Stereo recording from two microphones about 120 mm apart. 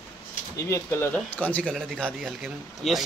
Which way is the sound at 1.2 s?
10° left (ahead or behind).